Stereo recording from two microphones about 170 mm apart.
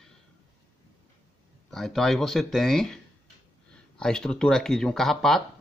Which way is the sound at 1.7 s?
Centre (ahead or behind).